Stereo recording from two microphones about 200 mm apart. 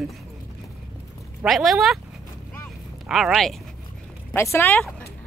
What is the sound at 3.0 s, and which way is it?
Speech, centre (ahead or behind).